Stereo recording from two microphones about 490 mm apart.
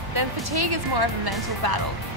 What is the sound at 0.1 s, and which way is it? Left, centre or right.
Speech, right.